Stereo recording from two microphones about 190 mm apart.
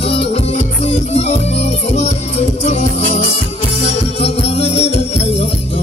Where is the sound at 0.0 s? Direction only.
30° left (ahead or behind).